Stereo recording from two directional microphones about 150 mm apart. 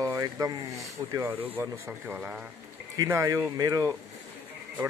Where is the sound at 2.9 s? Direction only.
20° right (ahead or behind).